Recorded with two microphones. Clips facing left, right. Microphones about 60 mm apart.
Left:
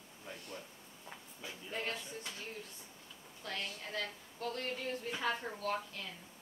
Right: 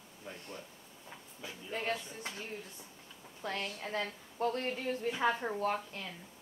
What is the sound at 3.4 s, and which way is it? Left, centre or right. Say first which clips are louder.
A woman's voice: right 4 dB; right.